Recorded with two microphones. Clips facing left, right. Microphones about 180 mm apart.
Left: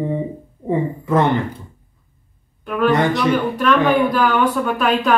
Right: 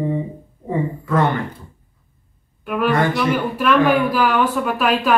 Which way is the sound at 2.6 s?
5° right (ahead or behind).